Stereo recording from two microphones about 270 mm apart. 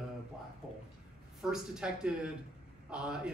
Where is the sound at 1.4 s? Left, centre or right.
Centre.